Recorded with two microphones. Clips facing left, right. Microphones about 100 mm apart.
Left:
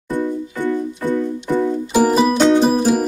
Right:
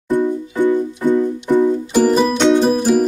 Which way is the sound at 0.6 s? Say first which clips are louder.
Right 5 dB; 20° right (ahead or behind).